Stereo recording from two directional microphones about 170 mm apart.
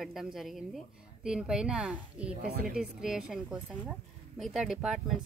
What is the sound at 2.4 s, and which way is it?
Speech, 65° right (ahead or behind).